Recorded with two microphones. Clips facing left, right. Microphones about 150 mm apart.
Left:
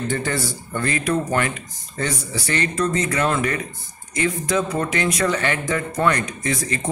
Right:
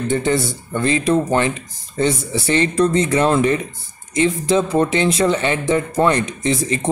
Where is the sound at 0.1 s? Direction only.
20° right (ahead or behind).